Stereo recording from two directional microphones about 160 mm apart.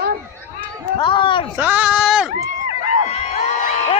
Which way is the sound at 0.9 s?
30° left (ahead or behind).